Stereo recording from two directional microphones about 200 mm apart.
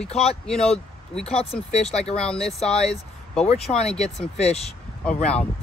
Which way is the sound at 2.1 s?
5° left (ahead or behind).